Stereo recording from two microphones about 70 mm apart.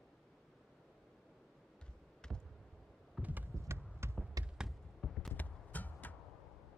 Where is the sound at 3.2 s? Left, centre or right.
Right.